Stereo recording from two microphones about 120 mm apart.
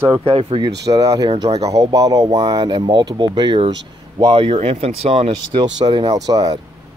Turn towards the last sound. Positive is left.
turn(degrees=-30)  # may be behind; listen again after turning